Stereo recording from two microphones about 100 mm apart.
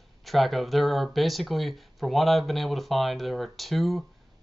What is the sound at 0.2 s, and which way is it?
Speech, centre (ahead or behind).